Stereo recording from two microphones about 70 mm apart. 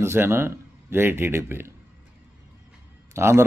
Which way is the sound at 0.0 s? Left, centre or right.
Right.